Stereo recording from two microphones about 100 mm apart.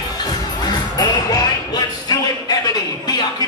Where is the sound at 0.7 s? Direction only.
45° left (ahead or behind).